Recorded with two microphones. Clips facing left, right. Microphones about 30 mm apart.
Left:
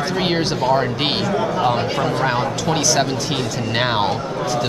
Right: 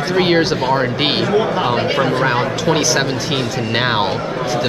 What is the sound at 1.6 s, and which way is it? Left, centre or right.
Speech, right.